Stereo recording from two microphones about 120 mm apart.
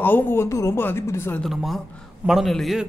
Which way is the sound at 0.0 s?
15° left (ahead or behind).